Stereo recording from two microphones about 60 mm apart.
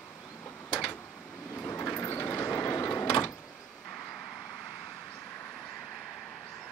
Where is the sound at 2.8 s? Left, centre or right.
Left.